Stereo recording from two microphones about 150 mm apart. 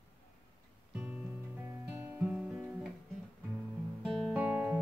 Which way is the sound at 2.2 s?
5° right (ahead or behind).